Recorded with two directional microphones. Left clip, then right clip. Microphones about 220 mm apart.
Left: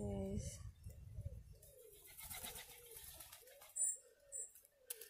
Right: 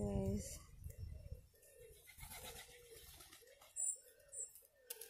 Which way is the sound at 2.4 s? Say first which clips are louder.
Left 1 dB; 50° left (ahead or behind).